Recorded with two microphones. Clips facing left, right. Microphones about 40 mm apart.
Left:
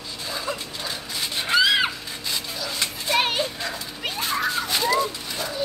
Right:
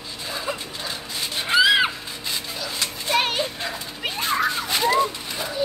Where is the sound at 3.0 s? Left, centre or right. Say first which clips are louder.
Even; centre.